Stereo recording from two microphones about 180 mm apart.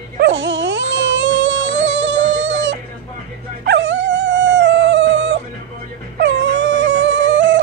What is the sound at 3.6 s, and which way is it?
Dog, 80° right.